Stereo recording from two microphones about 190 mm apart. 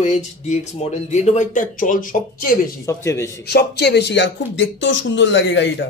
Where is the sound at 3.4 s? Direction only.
60° left (ahead or behind).